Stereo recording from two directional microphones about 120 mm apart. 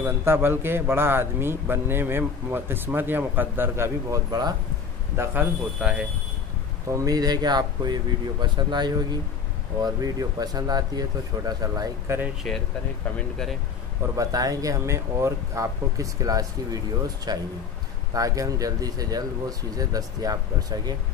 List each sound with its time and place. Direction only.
0.0 s speech: 20° right (ahead or behind)
4.3 s speech: 35° right (ahead or behind)
5.1 s speech: 20° right (ahead or behind)
6.9 s speech: 30° right (ahead or behind)
12.4 s speech: 5° left (ahead or behind)
14.1 s speech: 30° right (ahead or behind)